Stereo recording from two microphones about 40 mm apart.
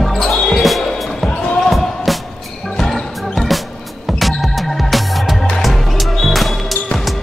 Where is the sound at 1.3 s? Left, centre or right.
Left.